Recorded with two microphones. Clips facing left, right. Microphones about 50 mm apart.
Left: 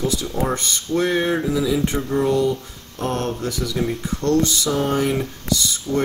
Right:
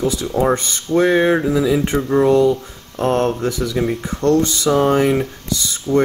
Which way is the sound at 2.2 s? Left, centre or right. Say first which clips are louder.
Right 6 dB; right.